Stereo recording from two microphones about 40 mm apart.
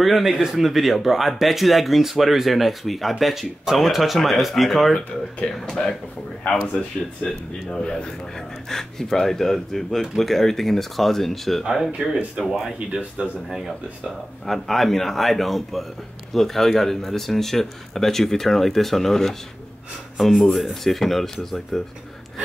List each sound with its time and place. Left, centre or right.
0.0 s speech: centre
5.7 s speech: centre
7.2 s speech: centre
11.7 s speech: centre
14.4 s speech: centre